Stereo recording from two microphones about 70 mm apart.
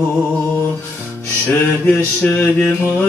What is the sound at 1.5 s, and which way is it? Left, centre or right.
Mantra, left.